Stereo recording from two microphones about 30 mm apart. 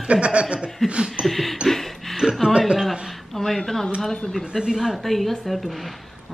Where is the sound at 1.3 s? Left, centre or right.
Centre.